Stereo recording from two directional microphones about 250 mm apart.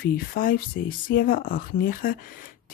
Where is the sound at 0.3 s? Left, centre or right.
Left.